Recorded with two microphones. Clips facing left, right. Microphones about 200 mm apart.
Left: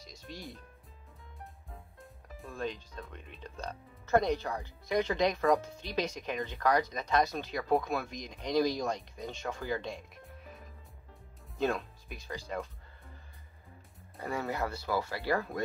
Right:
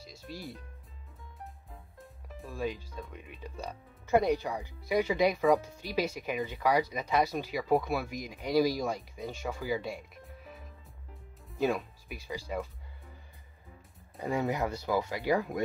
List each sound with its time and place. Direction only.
0.0 s music: 5° right (ahead or behind)
2.0 s speech: 5° right (ahead or behind)
14.1 s speech: 20° right (ahead or behind)